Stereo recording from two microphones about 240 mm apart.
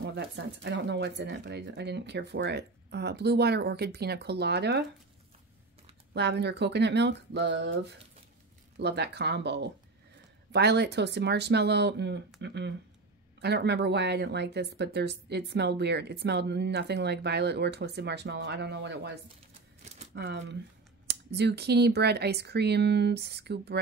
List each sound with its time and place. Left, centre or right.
0.0 s speech: right
6.1 s speech: right
20.2 s speech: right